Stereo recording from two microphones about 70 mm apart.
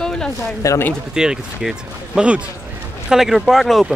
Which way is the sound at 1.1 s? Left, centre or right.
Centre.